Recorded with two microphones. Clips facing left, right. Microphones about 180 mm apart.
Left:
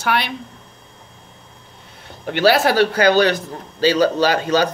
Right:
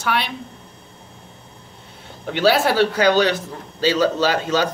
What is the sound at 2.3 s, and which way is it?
Speech, 70° left (ahead or behind).